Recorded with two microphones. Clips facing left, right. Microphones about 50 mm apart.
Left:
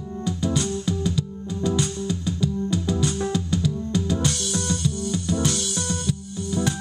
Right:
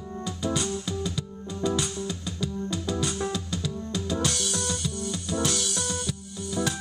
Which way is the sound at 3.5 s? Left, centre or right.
Centre.